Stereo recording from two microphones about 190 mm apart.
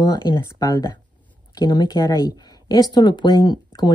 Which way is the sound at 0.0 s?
20° left (ahead or behind).